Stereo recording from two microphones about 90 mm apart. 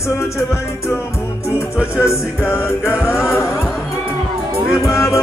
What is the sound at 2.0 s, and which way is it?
Music, 30° left (ahead or behind).